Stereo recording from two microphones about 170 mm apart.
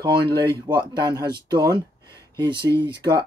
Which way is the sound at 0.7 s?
25° right (ahead or behind).